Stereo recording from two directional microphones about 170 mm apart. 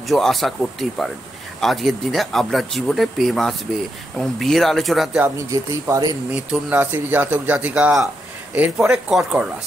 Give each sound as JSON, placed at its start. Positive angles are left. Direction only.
{"t": 0.1, "sound": "speech", "side_deg": 0}
{"t": 5.5, "sound": "speech", "side_deg": -20}
{"t": 6.3, "sound": "speech", "side_deg": -10}